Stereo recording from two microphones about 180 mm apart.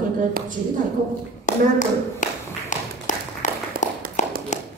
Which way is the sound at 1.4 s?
45° left (ahead or behind).